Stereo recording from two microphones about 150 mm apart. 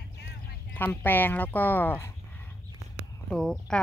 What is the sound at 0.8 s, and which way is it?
Speech, 15° left (ahead or behind).